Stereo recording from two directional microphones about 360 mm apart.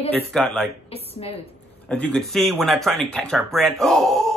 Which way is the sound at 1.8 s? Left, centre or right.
Centre.